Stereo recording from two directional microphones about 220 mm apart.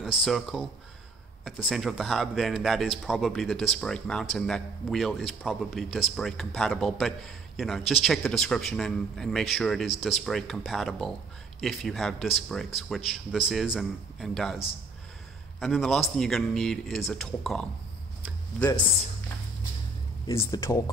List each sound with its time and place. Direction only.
0.2 s a man's voice: centre (ahead or behind)
15.6 s a man's voice: centre (ahead or behind)
20.2 s speech: 15° left (ahead or behind)